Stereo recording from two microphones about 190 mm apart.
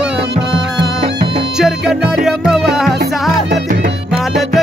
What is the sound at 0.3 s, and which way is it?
Music, 65° right (ahead or behind).